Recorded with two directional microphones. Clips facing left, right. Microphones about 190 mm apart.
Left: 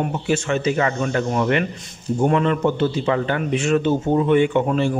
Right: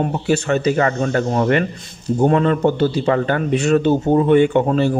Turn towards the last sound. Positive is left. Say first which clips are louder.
# right 3 dB
turn(degrees=-40)  # may be behind; listen again after turning